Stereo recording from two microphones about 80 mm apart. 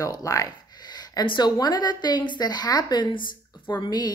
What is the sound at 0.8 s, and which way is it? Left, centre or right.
A woman's voice, left.